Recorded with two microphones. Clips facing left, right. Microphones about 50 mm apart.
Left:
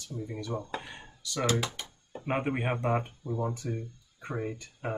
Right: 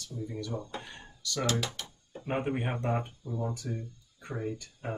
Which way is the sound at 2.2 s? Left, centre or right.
Left.